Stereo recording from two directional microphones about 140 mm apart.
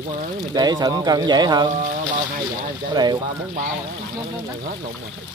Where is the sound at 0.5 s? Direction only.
30° right (ahead or behind).